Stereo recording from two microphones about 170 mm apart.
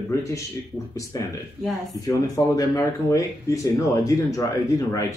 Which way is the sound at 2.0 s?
20° left (ahead or behind).